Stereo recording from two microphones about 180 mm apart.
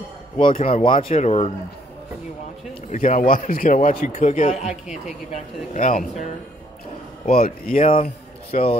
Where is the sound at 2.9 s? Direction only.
45° left (ahead or behind).